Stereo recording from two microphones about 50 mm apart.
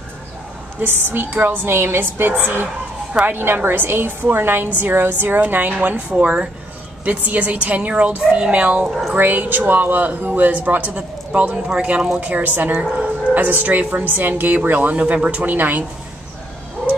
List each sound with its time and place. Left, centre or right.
0.7 s a woman's voice: right
2.3 s a woman's voice: right
6.2 s a woman's voice: right
15.0 s a woman's voice: right